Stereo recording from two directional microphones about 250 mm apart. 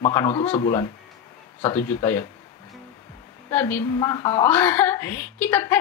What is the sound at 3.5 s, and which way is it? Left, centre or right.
A woman's voice, centre.